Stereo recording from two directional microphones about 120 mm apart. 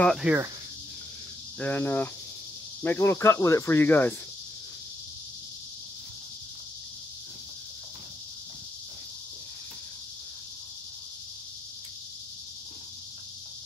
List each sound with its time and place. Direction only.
0.2 s speech: 10° right (ahead or behind)
1.6 s cricket: 20° left (ahead or behind)
2.8 s speech: 20° left (ahead or behind)